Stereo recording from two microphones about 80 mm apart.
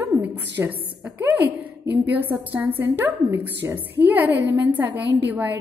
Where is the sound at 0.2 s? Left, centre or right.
Right.